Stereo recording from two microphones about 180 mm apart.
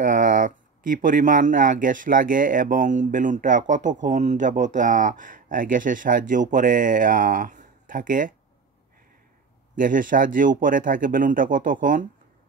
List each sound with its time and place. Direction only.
0.0 s speech: 45° right (ahead or behind)
9.8 s speech: 50° right (ahead or behind)